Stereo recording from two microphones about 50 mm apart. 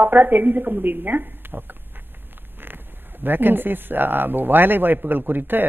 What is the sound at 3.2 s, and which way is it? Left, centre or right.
A woman's voice, right.